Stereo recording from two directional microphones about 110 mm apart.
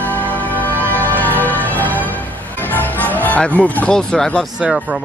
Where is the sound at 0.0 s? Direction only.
15° left (ahead or behind).